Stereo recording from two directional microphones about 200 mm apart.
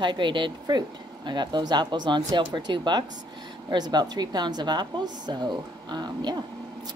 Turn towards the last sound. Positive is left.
turn(degrees=-20)  # may be behind; listen again after turning